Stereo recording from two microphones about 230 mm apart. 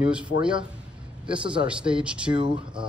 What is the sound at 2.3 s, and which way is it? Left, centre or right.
Speech, right.